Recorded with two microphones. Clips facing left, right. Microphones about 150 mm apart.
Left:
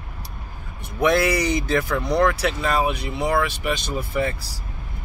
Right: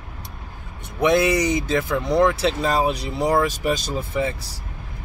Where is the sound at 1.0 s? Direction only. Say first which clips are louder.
Right 1 dB; 20° right (ahead or behind); by 3.9 s 40° right (ahead or behind).